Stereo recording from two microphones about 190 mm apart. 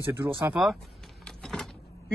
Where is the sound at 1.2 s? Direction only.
5° left (ahead or behind).